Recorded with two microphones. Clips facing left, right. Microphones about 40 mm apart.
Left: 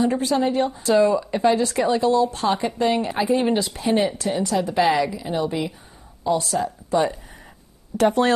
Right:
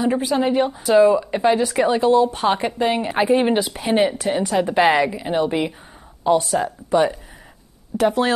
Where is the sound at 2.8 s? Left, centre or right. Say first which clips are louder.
Right 1 dB; centre.